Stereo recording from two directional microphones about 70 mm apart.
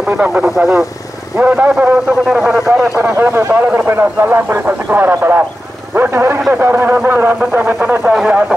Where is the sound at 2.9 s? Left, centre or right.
Right.